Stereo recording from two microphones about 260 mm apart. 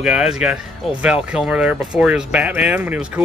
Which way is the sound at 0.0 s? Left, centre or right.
Centre.